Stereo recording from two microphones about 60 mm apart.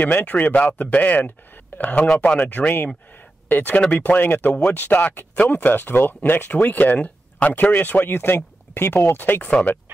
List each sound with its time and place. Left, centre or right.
0.0 s speech: left